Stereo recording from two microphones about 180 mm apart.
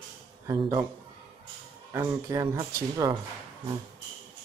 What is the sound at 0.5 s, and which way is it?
Speech, 15° right (ahead or behind).